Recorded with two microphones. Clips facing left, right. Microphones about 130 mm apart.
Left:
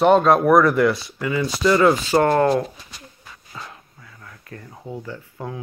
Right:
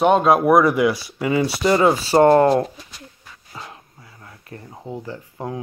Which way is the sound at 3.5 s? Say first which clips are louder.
Right 1 dB; 25° right (ahead or behind).